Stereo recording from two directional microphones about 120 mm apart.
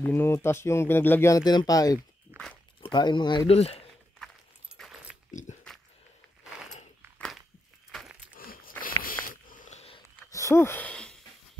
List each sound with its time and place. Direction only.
0.0 s speech: 20° left (ahead or behind)
1.3 s speech: 35° left (ahead or behind)
2.3 s walk: 10° left (ahead or behind)
2.8 s speech: 40° left (ahead or behind)
3.4 s speech: 60° left (ahead or behind)
5.3 s pig: 90° left
7.9 s keys jangling: 5° left (ahead or behind)
8.8 s a sound: 15° left (ahead or behind)
9.5 s a sound: 80° left
10.3 s a sound: 25° left (ahead or behind)